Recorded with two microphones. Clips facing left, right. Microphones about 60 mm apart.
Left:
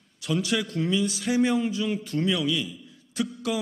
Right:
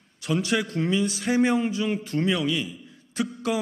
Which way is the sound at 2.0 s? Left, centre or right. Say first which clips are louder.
Even; right.